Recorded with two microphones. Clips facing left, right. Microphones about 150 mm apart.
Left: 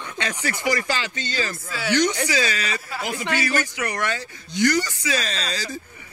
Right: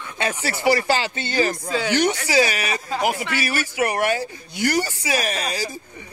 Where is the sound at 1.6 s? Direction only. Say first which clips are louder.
Right 4 dB; 20° right (ahead or behind).